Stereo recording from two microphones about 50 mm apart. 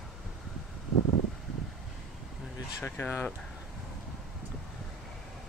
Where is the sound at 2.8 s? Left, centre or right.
Left.